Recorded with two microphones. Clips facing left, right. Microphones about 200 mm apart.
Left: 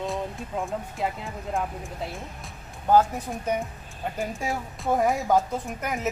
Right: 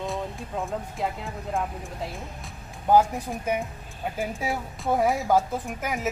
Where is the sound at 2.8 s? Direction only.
10° right (ahead or behind).